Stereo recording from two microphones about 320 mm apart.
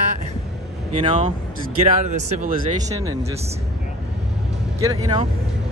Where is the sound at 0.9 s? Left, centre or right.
Centre.